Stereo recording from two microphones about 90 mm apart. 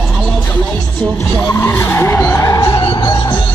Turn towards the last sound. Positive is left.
turn(degrees=45)  # may be behind; listen again after turning